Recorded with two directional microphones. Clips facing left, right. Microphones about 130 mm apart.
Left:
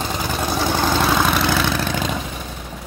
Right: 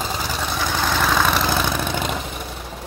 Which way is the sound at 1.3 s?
15° right (ahead or behind).